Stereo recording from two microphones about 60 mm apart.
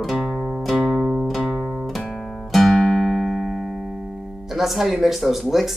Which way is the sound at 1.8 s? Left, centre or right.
Centre.